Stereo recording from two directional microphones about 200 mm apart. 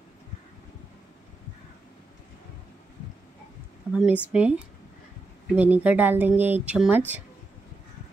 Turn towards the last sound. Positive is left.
turn(degrees=-10)  # may be behind; listen again after turning